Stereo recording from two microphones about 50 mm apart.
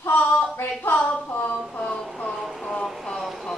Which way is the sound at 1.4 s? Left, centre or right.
Left.